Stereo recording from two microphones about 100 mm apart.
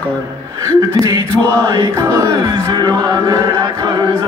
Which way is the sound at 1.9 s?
35° right (ahead or behind).